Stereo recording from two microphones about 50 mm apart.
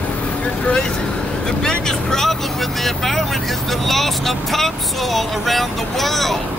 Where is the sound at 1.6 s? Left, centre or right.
Centre.